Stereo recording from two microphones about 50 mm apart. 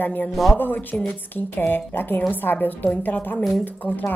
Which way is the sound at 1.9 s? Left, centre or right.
Left.